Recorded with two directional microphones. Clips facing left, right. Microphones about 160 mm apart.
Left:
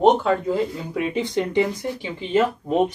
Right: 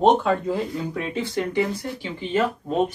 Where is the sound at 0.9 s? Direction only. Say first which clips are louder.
Left 3 dB; 15° left (ahead or behind).